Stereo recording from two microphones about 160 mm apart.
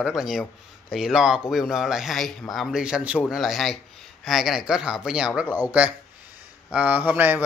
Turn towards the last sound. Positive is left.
turn(degrees=-10)  # may be behind; listen again after turning